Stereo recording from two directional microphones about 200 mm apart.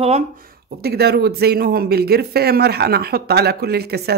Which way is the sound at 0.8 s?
55° right (ahead or behind).